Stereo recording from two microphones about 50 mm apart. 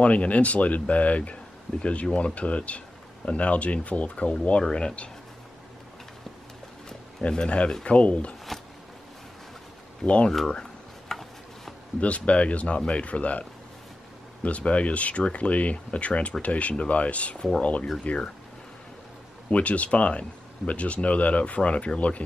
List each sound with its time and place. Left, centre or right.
0.0 s speech: left
6.9 s a sound: centre
7.8 s speech: left
10.0 s speech: left
11.1 s a sound: centre
12.0 s speech: left
19.5 s speech: left